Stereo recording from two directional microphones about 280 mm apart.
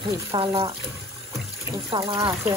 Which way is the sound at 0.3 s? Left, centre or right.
Centre.